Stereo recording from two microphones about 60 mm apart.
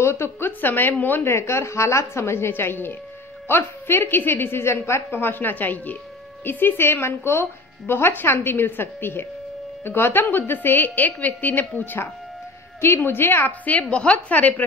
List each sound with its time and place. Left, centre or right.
0.0 s a woman's voice: left
0.5 s a woman's voice: left
13.7 s a woman's voice: left